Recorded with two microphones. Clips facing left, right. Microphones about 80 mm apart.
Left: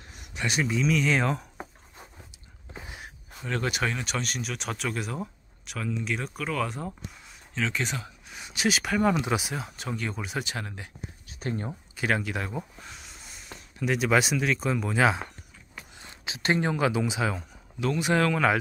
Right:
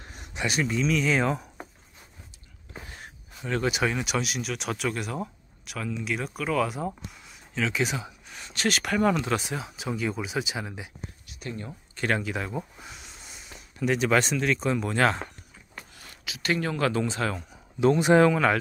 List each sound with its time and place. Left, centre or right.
0.5 s speech: centre
3.4 s speech: centre
8.3 s speech: centre
11.2 s a sound: left
11.9 s speech: centre
15.9 s speech: left; by 17.5 s centre
17.7 s speech: right
18.3 s speech: centre